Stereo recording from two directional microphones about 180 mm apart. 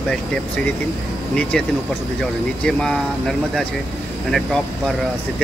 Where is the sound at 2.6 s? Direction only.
5° left (ahead or behind).